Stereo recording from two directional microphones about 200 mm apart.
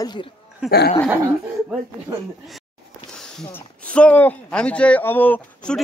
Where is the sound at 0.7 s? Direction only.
50° left (ahead or behind).